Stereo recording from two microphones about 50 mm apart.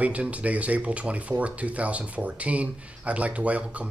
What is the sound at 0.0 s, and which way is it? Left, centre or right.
Speech, right.